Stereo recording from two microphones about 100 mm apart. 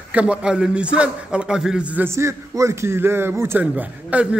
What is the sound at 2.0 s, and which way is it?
A man's voice, 30° right (ahead or behind).